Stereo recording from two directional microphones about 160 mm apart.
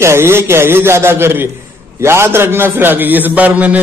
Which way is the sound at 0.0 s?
15° right (ahead or behind).